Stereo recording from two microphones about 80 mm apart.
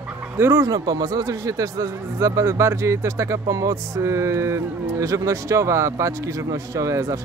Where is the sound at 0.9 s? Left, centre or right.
Right.